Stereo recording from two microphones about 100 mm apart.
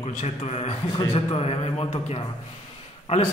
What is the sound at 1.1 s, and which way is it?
A man's voice, 65° left (ahead or behind).